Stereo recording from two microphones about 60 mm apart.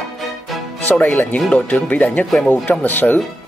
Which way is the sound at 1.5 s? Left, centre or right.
Left.